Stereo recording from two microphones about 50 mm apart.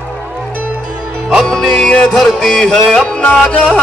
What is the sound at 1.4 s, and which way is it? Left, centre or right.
Music, centre.